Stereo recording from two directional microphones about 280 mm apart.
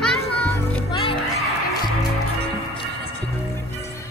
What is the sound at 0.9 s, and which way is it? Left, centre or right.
Music, centre.